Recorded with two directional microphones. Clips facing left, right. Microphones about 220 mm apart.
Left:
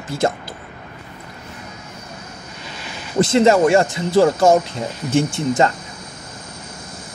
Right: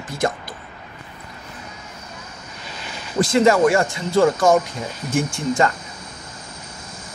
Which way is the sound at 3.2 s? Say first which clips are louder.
Left 2 dB; 25° left (ahead or behind).